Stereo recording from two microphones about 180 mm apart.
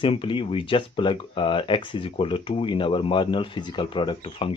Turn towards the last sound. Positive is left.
turn(degrees=30)  # may be behind; listen again after turning